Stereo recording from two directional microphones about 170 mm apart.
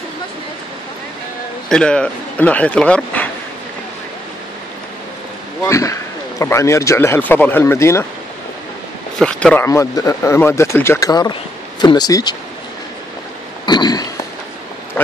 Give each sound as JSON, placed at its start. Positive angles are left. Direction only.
{"t": 1.7, "sound": "speech", "side_deg": 5}
{"t": 5.7, "sound": "speech", "side_deg": 20}
{"t": 9.2, "sound": "speech", "side_deg": 5}
{"t": 9.7, "sound": "speech", "side_deg": 20}
{"t": 13.7, "sound": "a sound", "side_deg": 25}